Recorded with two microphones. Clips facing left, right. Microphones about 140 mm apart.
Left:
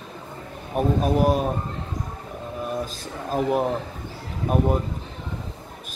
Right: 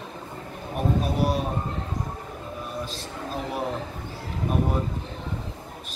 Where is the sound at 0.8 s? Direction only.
45° left (ahead or behind).